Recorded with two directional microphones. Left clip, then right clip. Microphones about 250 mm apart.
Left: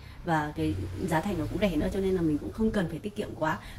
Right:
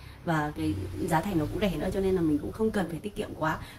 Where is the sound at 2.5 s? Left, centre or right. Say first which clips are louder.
Right 1 dB; centre.